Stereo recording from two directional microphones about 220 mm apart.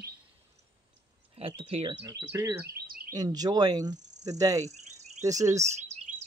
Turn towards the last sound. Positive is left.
turn(degrees=-15)  # may be behind; listen again after turning